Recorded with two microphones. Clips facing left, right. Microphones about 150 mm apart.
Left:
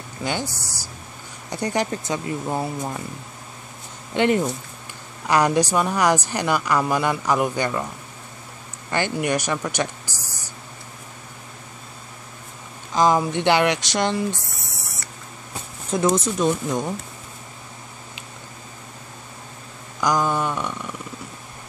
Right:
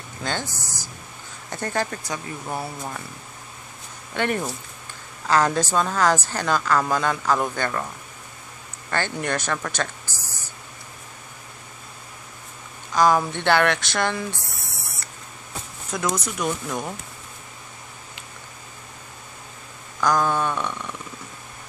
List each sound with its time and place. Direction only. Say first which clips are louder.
0.2 s a woman's voice: left 2 dB; 10° left (ahead or behind)
4.1 s a woman's voice: left 5 dB; 20° left (ahead or behind)
8.9 s speech: left 3 dB; 15° left (ahead or behind)
12.9 s a woman's voice: left 1 dB; 20° left (ahead or behind)
15.9 s speech: left 6 dB; 30° left (ahead or behind)
20.0 s a woman's voice: even; 15° left (ahead or behind)